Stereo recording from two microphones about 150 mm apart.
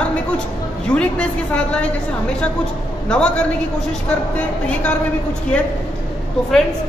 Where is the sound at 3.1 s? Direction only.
5° left (ahead or behind).